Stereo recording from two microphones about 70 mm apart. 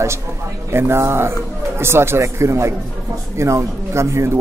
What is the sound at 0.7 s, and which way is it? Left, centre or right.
A man's voice, right.